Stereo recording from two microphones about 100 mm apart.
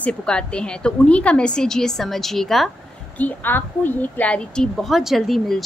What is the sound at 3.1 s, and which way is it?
A woman's voice, 20° left (ahead or behind).